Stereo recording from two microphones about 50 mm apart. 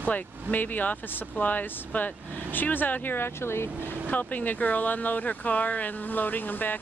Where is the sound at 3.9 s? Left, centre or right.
Left.